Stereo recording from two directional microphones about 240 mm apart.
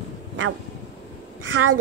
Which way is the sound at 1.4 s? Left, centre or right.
Right.